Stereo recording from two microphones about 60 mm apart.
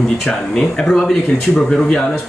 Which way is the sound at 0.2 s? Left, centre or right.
Centre.